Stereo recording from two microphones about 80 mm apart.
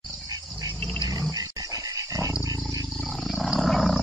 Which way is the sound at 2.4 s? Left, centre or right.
Right.